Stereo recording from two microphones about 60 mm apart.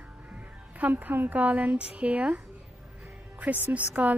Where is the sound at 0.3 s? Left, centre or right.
Right.